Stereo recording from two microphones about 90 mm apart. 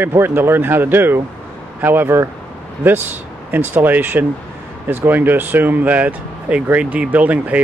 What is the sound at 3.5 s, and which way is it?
Speech, 20° right (ahead or behind).